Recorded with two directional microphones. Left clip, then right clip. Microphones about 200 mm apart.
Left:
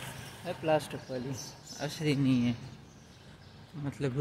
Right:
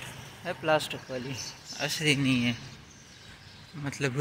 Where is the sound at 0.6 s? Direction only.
10° left (ahead or behind).